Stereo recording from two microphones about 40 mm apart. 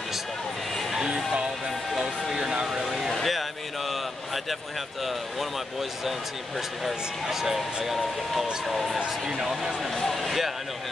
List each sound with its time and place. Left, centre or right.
0.9 s music: centre
2.3 s music: centre
2.8 s vehicle: centre
7.2 s speech: centre
10.2 s speech: centre